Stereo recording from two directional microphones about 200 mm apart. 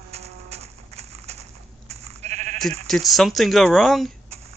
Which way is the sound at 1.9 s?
30° right (ahead or behind).